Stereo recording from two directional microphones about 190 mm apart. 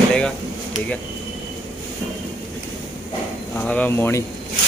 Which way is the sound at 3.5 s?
10° left (ahead or behind).